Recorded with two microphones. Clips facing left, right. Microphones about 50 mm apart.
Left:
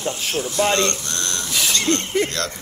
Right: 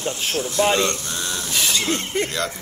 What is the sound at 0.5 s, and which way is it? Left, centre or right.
Speech, centre.